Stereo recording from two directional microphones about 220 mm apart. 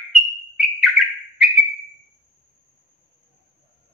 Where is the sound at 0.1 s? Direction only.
Centre (ahead or behind).